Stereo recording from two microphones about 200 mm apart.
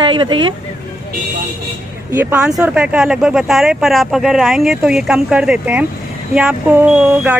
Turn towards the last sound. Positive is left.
turn(degrees=-10)  # may be behind; listen again after turning